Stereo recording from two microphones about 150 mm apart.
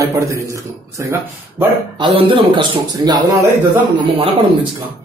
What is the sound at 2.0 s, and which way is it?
Speech, 35° right (ahead or behind).